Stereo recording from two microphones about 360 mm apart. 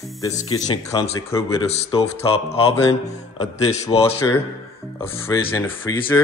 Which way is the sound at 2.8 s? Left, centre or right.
Centre.